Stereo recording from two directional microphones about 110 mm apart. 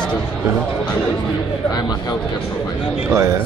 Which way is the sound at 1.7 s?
40° left (ahead or behind).